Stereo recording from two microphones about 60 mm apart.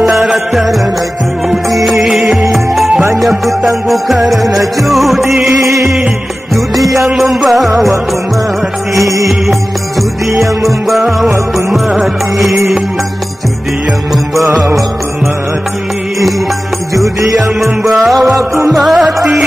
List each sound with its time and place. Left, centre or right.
0.0 s music: centre
5.5 s music: right
6.5 s music: centre
9.0 s music: right
12.0 s music: centre
16.9 s music: right
17.6 s music: centre